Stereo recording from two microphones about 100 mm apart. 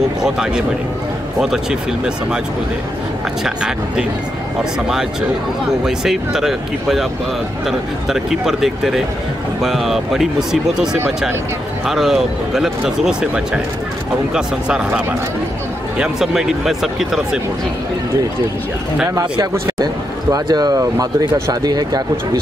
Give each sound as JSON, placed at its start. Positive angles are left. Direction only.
{"t": 0.2, "sound": "speech", "side_deg": -5}
{"t": 3.4, "sound": "speech", "side_deg": -5}
{"t": 5.9, "sound": "speech", "side_deg": -5}
{"t": 19.8, "sound": "speech", "side_deg": -40}